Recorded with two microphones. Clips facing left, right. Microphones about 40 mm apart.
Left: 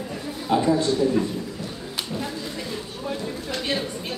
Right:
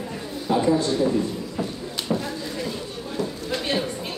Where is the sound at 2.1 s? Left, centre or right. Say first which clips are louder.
Right 6 dB; right.